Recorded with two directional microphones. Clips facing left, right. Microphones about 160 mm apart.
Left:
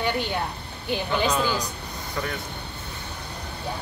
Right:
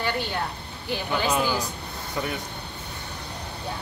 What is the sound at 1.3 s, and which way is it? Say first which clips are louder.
Speech: even; 10° right (ahead or behind).